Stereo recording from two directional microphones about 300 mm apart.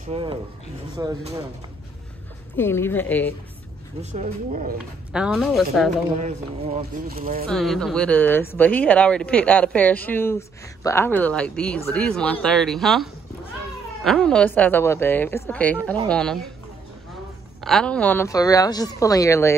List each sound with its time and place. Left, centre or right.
0.1 s speech: centre
2.5 s a woman's voice: centre
4.0 s speech: right
5.1 s speech: centre
6.2 s speech: right
7.4 s speech: centre
17.6 s a woman's voice: centre